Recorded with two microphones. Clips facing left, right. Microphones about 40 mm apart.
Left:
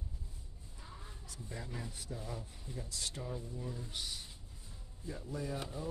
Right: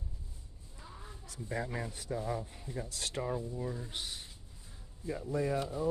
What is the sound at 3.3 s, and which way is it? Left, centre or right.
Speech, right.